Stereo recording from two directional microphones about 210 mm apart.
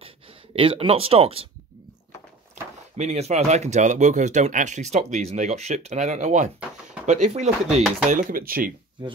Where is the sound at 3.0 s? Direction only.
35° right (ahead or behind).